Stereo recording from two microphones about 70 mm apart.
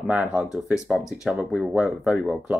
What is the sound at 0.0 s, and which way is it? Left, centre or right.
Speech, centre.